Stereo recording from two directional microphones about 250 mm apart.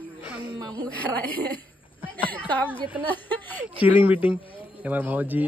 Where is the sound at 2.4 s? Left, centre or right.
Centre.